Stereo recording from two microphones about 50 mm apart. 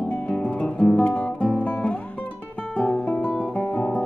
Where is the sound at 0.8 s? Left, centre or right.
Left.